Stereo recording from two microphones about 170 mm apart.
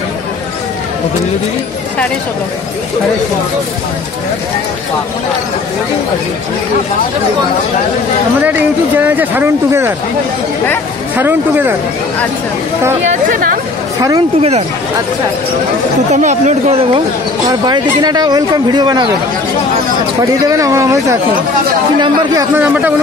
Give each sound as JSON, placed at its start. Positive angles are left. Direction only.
{"t": 8.5, "sound": "speech", "side_deg": -10}
{"t": 11.1, "sound": "speech", "side_deg": -10}
{"t": 16.1, "sound": "speech", "side_deg": -45}
{"t": 17.5, "sound": "speech", "side_deg": -25}
{"t": 20.4, "sound": "speech", "side_deg": -20}
{"t": 22.6, "sound": "speech", "side_deg": -10}